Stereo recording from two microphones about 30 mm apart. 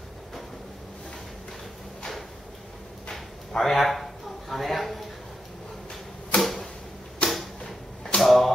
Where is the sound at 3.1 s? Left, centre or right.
Centre.